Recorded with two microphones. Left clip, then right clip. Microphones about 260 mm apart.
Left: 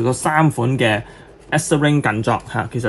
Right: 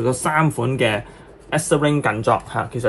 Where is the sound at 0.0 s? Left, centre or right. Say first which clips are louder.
Left 2 dB; left.